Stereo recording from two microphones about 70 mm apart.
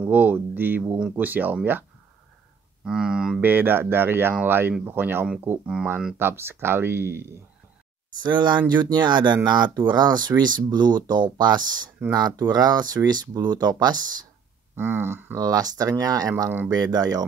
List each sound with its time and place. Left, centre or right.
0.0 s speech: right
2.8 s speech: centre
3.3 s speech: right
8.2 s speech: right
12.1 s speech: right
14.8 s speech: right
15.3 s speech: right
16.4 s speech: right
16.7 s speech: right